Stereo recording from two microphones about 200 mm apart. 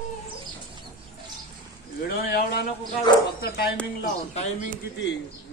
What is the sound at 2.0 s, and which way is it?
Speech, 50° left (ahead or behind).